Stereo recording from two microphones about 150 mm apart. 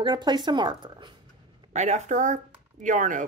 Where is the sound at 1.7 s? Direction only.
50° right (ahead or behind).